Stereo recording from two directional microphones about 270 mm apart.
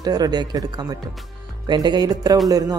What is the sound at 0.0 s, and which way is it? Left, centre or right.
Speech, centre.